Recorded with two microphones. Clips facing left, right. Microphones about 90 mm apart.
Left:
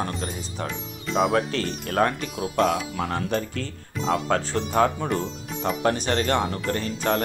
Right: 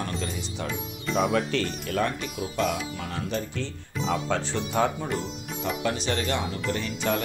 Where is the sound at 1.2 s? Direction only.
55° left (ahead or behind).